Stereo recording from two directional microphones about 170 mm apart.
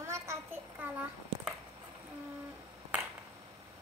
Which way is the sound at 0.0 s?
15° right (ahead or behind).